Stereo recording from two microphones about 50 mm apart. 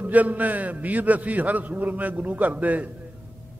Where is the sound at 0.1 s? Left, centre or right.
Right.